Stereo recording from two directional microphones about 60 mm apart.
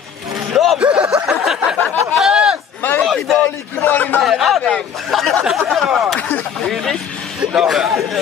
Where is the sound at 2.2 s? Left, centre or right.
Centre.